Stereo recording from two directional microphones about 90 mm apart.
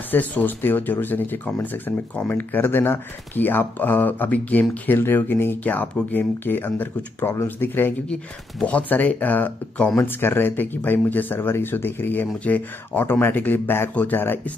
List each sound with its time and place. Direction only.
0.1 s speech: 20° left (ahead or behind)
8.1 s speech: 10° left (ahead or behind)